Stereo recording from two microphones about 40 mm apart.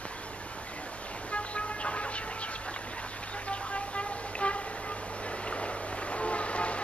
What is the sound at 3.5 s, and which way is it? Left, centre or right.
Vehicle, left.